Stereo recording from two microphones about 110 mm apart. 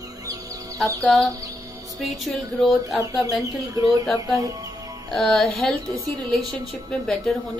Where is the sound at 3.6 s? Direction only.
35° right (ahead or behind).